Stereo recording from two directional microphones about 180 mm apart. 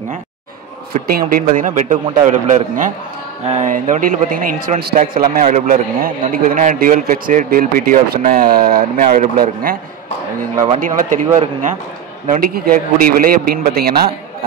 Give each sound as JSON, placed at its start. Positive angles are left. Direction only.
{"t": 1.0, "sound": "a man's voice", "side_deg": -55}
{"t": 10.8, "sound": "a man's voice", "side_deg": -45}
{"t": 12.3, "sound": "a man's voice", "side_deg": -55}